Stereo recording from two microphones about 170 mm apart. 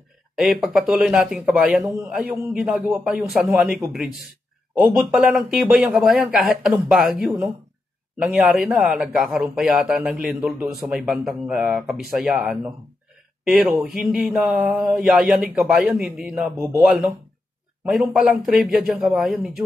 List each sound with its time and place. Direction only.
0.4 s speech: centre (ahead or behind)
17.8 s speech: centre (ahead or behind)